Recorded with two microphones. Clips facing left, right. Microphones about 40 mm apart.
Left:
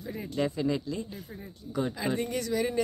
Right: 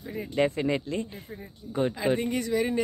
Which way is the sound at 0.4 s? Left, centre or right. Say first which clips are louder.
Right 4 dB; right.